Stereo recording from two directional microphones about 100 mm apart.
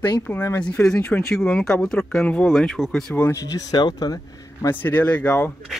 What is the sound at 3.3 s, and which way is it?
Speech, 35° left (ahead or behind).